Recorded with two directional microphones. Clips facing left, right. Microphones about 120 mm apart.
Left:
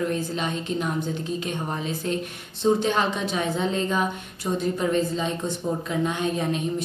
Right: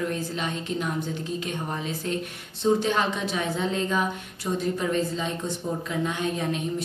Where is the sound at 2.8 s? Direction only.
25° left (ahead or behind).